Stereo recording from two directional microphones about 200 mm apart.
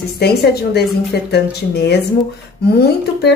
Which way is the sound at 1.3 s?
55° left (ahead or behind).